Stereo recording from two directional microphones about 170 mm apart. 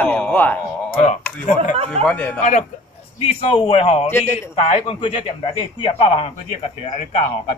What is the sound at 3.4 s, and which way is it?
A man's voice, 35° left (ahead or behind).